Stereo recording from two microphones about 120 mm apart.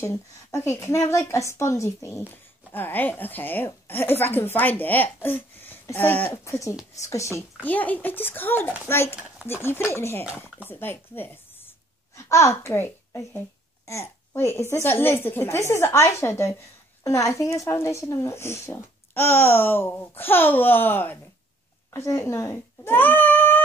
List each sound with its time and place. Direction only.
0.7 s a child's voice: 25° left (ahead or behind)
7.6 s a woman's voice: 15° left (ahead or behind)